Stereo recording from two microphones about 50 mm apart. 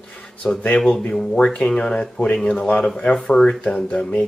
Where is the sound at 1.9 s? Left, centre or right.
Left.